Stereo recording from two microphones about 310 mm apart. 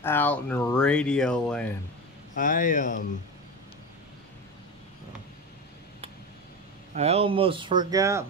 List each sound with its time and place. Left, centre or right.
0.0 s speech: centre
2.3 s speech: left
6.9 s speech: centre